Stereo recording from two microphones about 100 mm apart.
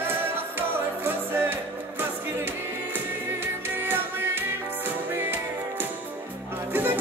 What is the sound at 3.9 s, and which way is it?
Music, 20° right (ahead or behind).